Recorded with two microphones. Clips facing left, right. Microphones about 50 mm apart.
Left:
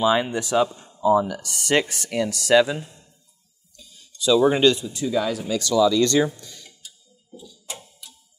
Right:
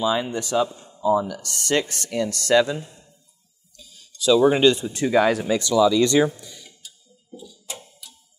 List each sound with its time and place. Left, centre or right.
0.0 s speech: left
0.3 s speech: centre
3.7 s a sound: centre
4.3 s speech: centre
4.7 s speech: right
5.5 s speech: right